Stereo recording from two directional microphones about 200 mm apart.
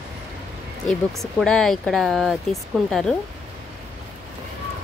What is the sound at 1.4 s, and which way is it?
Speech, 5° left (ahead or behind).